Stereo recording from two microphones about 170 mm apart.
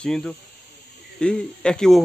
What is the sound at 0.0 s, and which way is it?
Speech, 5° left (ahead or behind).